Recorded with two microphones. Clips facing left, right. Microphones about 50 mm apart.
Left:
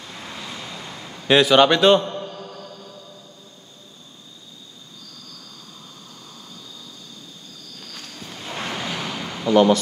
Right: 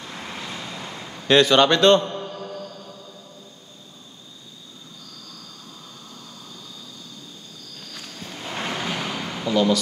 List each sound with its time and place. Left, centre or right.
0.1 s vehicle: centre
0.8 s a sound: centre
1.2 s a man's voice: centre
2.1 s mantra: centre
7.9 s a sound: centre
9.5 s speech: left